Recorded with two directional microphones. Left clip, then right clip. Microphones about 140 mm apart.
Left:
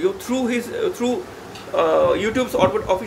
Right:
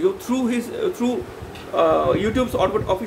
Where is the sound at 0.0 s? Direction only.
15° right (ahead or behind).